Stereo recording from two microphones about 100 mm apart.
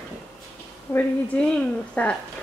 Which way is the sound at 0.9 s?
25° left (ahead or behind).